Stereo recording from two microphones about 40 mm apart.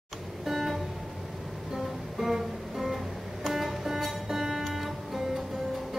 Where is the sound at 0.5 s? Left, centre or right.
Centre.